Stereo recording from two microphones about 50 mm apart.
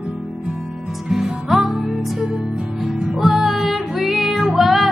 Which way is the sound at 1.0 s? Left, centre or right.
Centre.